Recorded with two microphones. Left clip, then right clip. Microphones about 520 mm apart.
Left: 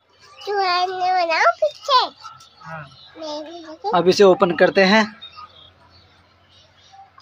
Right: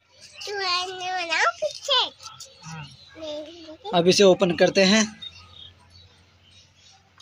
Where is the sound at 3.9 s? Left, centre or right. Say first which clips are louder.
Left 3 dB; right.